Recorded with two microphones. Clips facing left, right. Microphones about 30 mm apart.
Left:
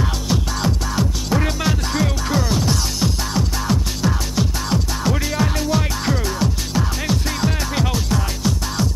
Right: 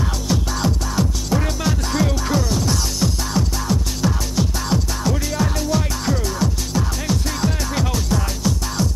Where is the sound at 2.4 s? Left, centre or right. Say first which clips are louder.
Left 1 dB; left.